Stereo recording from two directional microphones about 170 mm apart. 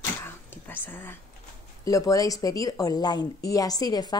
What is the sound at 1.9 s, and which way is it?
Speech, 20° left (ahead or behind).